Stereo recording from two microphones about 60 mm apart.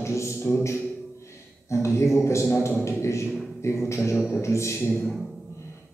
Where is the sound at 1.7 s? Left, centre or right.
Left.